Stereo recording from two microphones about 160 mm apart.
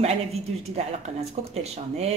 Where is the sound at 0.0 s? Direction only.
40° right (ahead or behind).